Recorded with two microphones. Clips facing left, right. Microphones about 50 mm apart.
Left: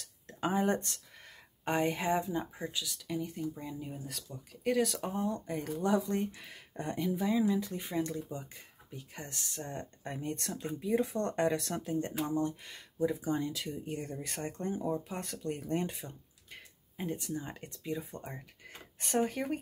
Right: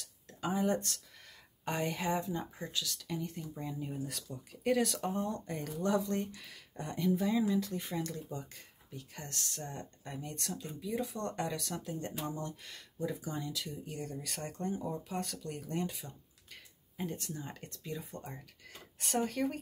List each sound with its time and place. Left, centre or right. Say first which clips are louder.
0.3 s speech: left 2 dB; left
0.8 s a sound: even; left
2.0 s speech: left 3 dB; left
7.0 s speech: even; centre
9.6 s speech: left 3 dB; left
13.3 s speech: left 6 dB; left; by 17.4 s centre
17.4 s speech: left 3 dB; left
19.0 s speech: left 2 dB; centre